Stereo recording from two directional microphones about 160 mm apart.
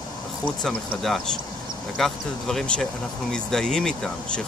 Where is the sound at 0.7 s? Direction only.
Centre (ahead or behind).